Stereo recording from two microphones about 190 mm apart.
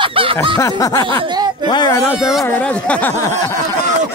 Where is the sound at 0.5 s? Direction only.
20° left (ahead or behind).